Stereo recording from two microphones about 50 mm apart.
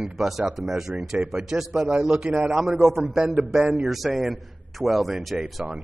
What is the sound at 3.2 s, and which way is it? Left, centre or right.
Speech, right.